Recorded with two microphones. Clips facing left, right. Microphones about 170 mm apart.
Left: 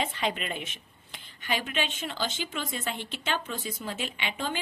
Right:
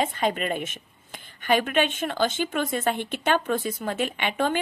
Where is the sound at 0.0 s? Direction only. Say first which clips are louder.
Right 6 dB; 45° right (ahead or behind).